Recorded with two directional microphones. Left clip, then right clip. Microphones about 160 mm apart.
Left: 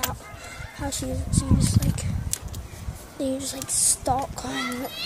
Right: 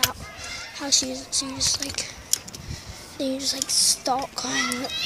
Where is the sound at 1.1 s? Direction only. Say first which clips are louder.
Even; 5° right (ahead or behind).